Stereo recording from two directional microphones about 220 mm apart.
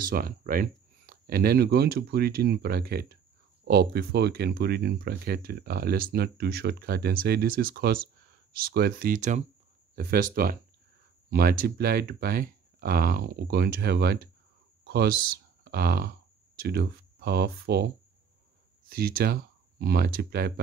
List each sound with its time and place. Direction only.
0.0 s speech: 40° right (ahead or behind)